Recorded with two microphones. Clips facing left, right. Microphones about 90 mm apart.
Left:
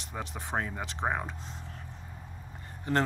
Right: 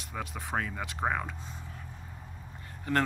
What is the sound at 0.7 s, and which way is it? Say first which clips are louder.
Speech: even; 15° left (ahead or behind).